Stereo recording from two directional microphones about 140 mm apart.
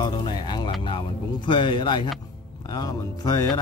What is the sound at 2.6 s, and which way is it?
Speech, 25° left (ahead or behind).